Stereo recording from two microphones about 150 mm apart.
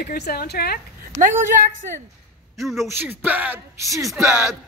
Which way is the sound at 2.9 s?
15° right (ahead or behind).